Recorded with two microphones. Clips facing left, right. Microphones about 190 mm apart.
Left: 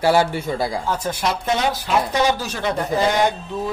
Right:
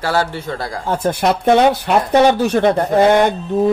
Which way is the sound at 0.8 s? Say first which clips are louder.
Right 6 dB; 55° right (ahead or behind).